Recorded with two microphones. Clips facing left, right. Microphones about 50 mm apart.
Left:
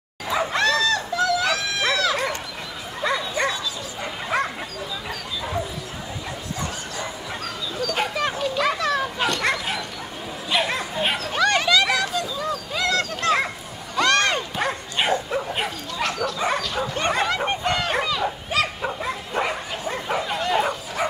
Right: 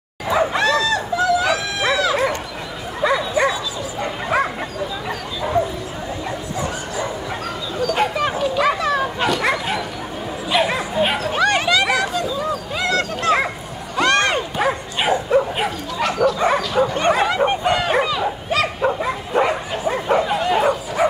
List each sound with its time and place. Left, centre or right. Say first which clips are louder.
0.3 s a sound: right 4 dB; centre
3.0 s bow-wow: right 6 dB; centre
7.7 s bow-wow: right 6 dB; centre
9.2 s bow-wow: right 4 dB; centre
11.3 s a sound: right 1 dB; right
14.6 s bow-wow: right 5 dB; centre
18.5 s dog: right 5 dB; centre
18.9 s bow-wow: right 7 dB; centre